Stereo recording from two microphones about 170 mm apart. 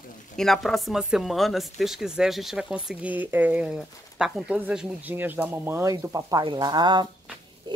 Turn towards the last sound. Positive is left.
turn(degrees=-25)  # may be behind; listen again after turning